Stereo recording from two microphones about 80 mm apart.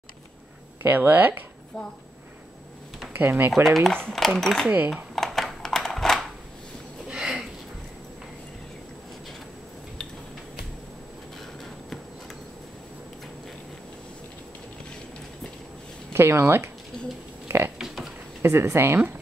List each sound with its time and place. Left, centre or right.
0.8 s speech: right
3.2 s speech: right
3.6 s speech: centre
4.9 s computer keyboard: centre
7.1 s a sound: centre
16.1 s speech: right
16.9 s oink: centre
17.5 s a sound: right
17.7 s a sound: centre
18.4 s speech: right